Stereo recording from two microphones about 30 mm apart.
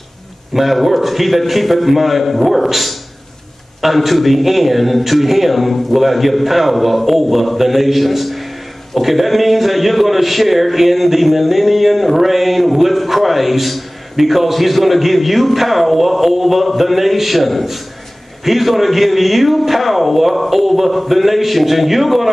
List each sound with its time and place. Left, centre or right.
0.6 s a man's voice: centre